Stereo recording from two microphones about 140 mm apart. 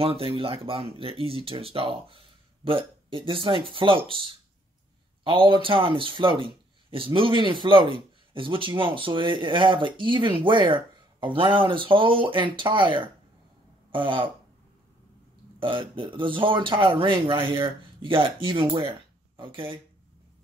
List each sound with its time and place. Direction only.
0.0 s speech: 40° right (ahead or behind)
15.6 s speech: 40° right (ahead or behind)